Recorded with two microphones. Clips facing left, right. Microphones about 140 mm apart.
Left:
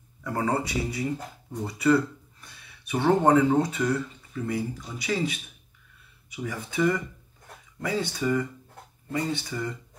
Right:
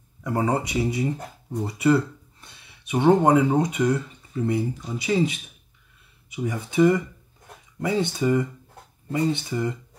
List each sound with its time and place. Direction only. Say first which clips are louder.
0.2 s speech: right 3 dB; 20° right (ahead or behind)